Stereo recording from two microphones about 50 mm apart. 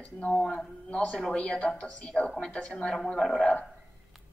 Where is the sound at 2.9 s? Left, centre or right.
Centre.